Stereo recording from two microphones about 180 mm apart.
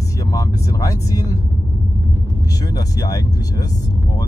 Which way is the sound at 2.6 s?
20° left (ahead or behind).